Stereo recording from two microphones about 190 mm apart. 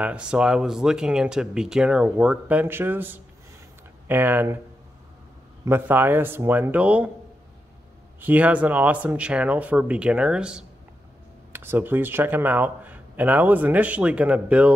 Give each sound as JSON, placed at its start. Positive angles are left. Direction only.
{"t": 0.0, "sound": "speech", "side_deg": -5}
{"t": 5.7, "sound": "speech", "side_deg": -10}
{"t": 8.2, "sound": "speech", "side_deg": -10}